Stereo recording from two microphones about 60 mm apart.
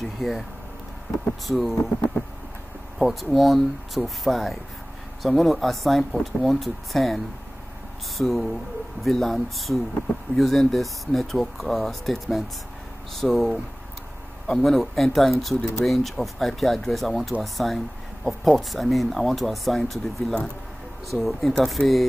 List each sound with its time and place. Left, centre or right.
0.2 s speech: centre
1.5 s speech: centre
3.0 s speech: centre
8.2 s speech: centre